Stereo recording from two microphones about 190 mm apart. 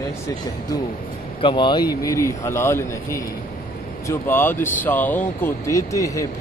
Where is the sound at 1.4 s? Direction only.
25° left (ahead or behind).